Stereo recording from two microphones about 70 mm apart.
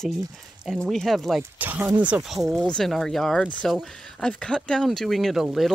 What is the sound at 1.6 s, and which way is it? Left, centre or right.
Speech, right.